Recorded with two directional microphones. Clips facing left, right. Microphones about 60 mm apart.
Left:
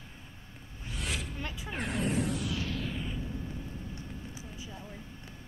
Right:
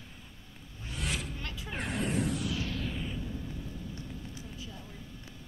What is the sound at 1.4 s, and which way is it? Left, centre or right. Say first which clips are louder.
Speech: left 2 dB; centre.